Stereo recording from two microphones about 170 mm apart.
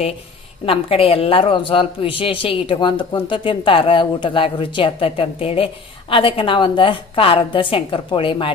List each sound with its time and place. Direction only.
0.7 s a woman's voice: 35° left (ahead or behind)